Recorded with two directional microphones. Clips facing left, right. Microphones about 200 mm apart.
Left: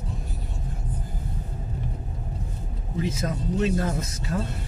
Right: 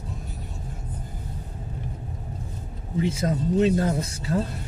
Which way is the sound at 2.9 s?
30° right (ahead or behind).